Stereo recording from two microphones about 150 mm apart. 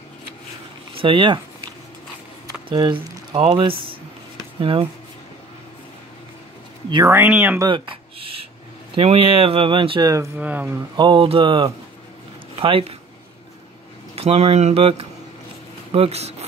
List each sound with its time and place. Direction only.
0.9 s speech: 35° right (ahead or behind)
2.4 s speech: 30° right (ahead or behind)
7.1 s speech: 15° right (ahead or behind)
7.6 s a sound: 35° right (ahead or behind)
8.9 s speech: 40° right (ahead or behind)
10.3 s speech: 10° right (ahead or behind)
11.0 s speech: 35° right (ahead or behind)
14.1 s speech: 40° right (ahead or behind)